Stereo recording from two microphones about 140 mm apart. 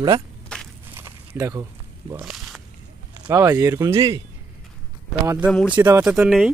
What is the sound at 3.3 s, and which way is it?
Speech, 20° right (ahead or behind).